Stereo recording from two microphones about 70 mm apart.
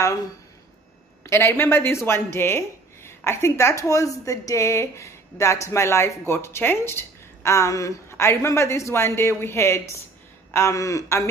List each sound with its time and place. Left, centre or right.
1.2 s speech: left
8.1 s speech: left
10.5 s a sound: left